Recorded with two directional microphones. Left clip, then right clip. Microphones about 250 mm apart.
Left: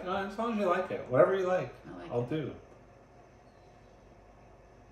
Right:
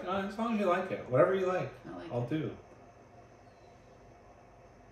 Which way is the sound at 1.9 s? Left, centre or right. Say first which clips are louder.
Right 1 dB; centre.